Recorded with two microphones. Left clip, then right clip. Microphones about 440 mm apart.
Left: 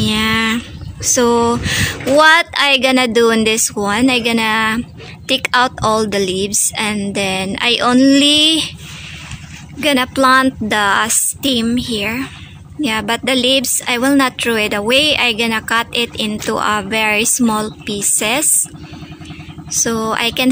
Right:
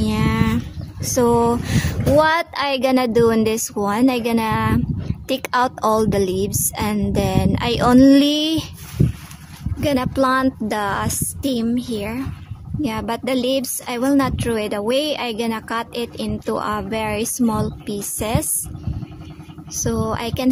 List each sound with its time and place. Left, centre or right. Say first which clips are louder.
0.0 s a sound: left 7 dB; right
1.0 s a woman's voice: left 4 dB; right
9.8 s a woman's voice: left 5 dB; right
19.7 s a woman's voice: left 6 dB; right